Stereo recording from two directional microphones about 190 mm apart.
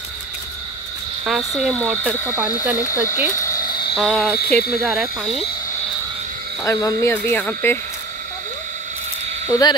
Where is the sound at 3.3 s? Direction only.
15° left (ahead or behind).